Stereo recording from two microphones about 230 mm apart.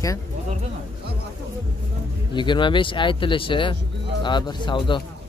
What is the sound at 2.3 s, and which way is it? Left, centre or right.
Speech, left.